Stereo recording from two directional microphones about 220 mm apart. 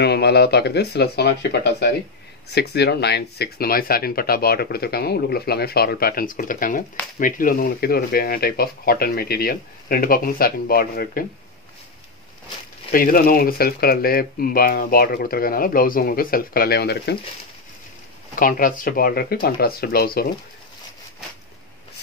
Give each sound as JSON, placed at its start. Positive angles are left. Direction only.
{"t": 0.0, "sound": "speech", "side_deg": 50}
{"t": 12.9, "sound": "speech", "side_deg": 40}
{"t": 18.4, "sound": "speech", "side_deg": 40}